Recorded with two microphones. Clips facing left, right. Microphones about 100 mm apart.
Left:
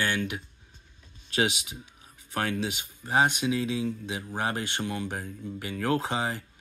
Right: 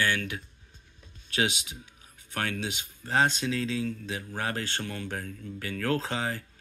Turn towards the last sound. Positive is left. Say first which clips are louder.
# left 2 dB
turn(degrees=20)  # may be behind; listen again after turning